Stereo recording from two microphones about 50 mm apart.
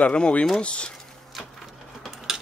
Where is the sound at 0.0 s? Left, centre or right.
Left.